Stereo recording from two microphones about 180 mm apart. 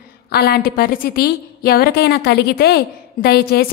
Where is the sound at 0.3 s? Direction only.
60° left (ahead or behind).